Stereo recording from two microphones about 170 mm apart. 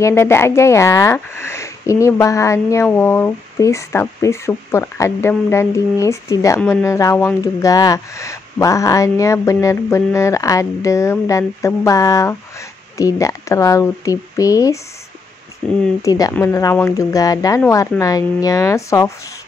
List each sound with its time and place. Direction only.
0.0 s speech: 15° left (ahead or behind)
16.0 s speech: 20° left (ahead or behind)